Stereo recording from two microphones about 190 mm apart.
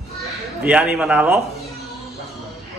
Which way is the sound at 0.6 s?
5° right (ahead or behind).